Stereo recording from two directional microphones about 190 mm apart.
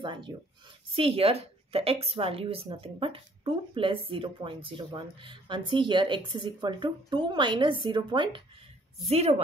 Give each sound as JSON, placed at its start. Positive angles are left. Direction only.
{"t": 0.0, "sound": "a woman's voice", "side_deg": -25}